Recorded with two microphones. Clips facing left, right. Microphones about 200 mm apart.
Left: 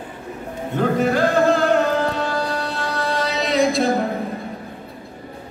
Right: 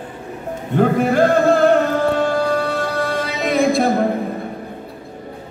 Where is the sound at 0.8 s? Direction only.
50° right (ahead or behind).